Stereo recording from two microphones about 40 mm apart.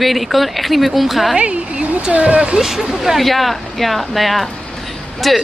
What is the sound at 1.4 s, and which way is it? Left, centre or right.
Speech, right.